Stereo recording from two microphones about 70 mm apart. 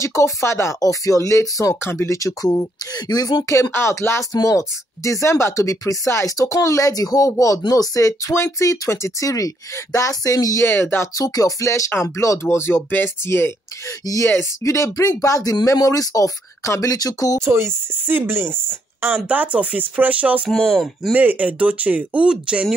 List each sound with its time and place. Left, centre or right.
0.0 s speech: left
0.7 s speech: left
1.8 s speech: left
2.1 s speech: left
3.7 s speech: left
4.3 s speech: left
10.6 s speech: left
11.1 s speech: left
14.0 s speech: left
14.6 s speech: left
17.5 s speech: right
19.1 s speech: right
20.4 s speech: centre
21.1 s speech: right